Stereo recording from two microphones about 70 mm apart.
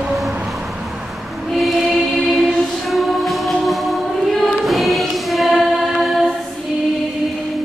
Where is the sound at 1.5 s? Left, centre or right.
Centre.